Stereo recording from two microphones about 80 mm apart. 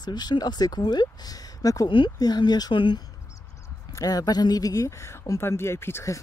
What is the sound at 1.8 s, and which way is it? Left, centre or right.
Speech, left.